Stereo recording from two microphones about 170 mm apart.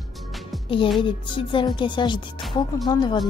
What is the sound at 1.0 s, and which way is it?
A woman's voice, 30° left (ahead or behind).